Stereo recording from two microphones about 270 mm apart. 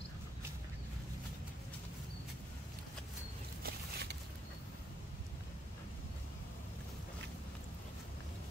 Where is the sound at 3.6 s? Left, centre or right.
Right.